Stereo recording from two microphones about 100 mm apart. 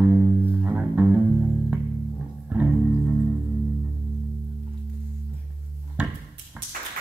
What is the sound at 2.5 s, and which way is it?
Music, 15° right (ahead or behind).